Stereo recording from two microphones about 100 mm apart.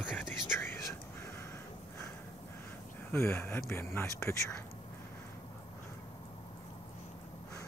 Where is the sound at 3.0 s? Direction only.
25° left (ahead or behind).